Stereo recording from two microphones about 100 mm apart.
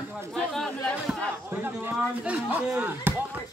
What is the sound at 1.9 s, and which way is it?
Chop, 10° right (ahead or behind).